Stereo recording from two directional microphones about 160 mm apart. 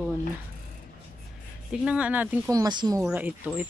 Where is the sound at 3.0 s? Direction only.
10° right (ahead or behind).